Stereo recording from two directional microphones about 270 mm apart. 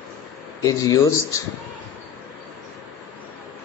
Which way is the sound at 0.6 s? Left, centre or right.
Centre.